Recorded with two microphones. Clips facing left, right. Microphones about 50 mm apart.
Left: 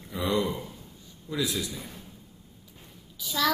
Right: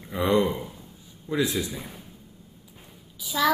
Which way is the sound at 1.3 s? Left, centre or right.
Right.